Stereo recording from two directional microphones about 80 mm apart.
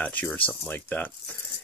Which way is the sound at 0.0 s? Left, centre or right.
Centre.